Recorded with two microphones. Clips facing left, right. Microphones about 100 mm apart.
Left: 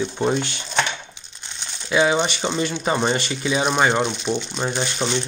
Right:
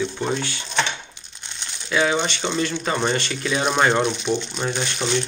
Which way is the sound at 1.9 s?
15° left (ahead or behind).